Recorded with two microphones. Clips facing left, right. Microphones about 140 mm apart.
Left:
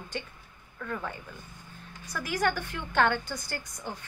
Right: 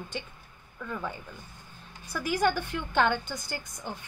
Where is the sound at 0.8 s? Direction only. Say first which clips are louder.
Even; 10° right (ahead or behind).